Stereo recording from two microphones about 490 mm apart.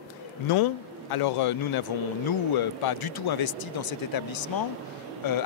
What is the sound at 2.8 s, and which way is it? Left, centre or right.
Speech, left.